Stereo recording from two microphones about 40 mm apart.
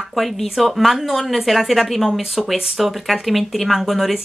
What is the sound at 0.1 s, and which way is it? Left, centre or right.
Speech, centre.